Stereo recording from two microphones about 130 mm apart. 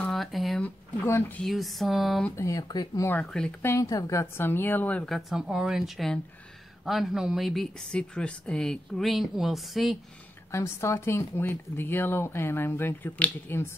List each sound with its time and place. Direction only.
0.0 s a sound: centre (ahead or behind)
0.6 s speech: 15° left (ahead or behind)
1.4 s speech: centre (ahead or behind)
2.3 s speech: 25° left (ahead or behind)
3.1 s a woman's voice: 10° left (ahead or behind)
3.6 s a woman's voice: 25° left (ahead or behind); by 9.9 s centre (ahead or behind)
10.5 s a woman's voice: 25° left (ahead or behind)